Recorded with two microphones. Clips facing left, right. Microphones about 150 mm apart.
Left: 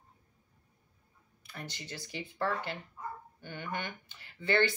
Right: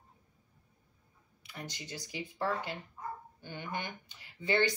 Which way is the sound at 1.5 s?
15° right (ahead or behind).